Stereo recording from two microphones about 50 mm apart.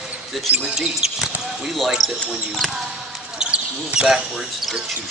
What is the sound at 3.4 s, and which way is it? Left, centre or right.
Basketball bounce, centre.